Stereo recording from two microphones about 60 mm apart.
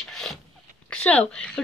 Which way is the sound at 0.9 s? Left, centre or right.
Left.